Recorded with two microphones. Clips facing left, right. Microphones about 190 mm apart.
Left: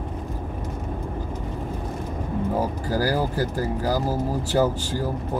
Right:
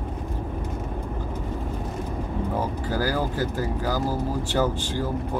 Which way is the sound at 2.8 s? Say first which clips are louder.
Left 2 dB; 40° left (ahead or behind).